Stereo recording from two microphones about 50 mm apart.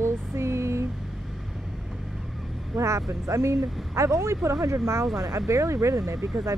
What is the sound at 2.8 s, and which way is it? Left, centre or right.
Speech, right.